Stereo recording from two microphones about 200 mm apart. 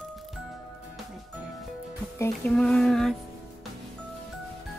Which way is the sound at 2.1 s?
15° left (ahead or behind).